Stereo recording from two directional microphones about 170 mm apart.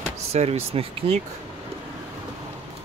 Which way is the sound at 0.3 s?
40° right (ahead or behind).